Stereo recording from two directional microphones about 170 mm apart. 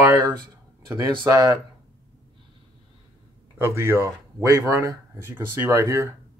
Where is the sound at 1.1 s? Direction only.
25° right (ahead or behind).